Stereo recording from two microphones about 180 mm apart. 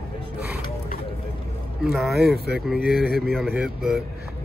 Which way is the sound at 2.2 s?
60° right (ahead or behind).